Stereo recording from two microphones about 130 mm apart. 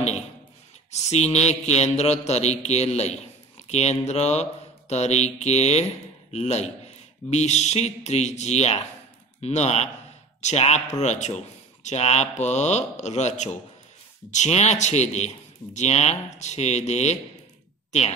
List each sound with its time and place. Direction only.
0.9 s a man's voice: 60° left (ahead or behind)